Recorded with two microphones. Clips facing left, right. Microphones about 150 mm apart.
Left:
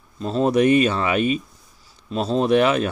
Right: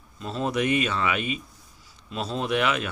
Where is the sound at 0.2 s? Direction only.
35° left (ahead or behind).